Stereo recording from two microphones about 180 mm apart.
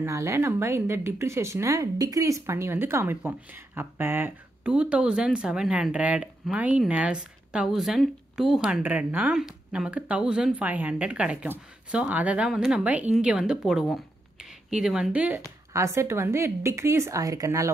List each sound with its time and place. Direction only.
0.0 s speech: 15° right (ahead or behind)